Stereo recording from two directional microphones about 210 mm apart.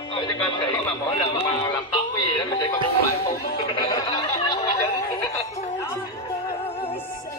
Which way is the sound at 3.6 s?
25° left (ahead or behind).